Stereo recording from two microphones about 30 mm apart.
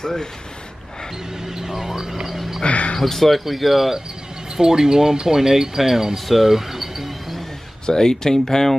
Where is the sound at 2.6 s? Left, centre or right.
Left.